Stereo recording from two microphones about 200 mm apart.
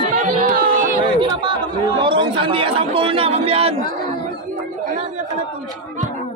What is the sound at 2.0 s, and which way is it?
A man's voice, 25° right (ahead or behind).